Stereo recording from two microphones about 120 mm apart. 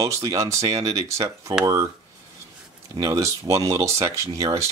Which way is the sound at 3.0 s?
30° right (ahead or behind).